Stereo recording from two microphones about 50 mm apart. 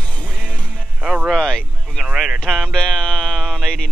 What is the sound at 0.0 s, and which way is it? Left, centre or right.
Music, left.